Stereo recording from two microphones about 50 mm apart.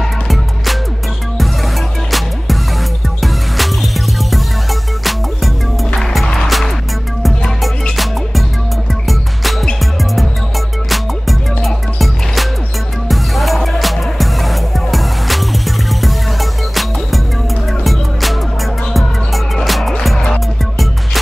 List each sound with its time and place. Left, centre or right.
2.0 s music: centre
5.9 s music: centre
9.4 s music: centre
10.9 s music: centre
18.9 s music: centre